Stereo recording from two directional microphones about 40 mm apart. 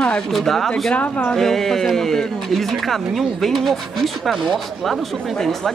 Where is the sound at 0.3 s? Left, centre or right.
Centre.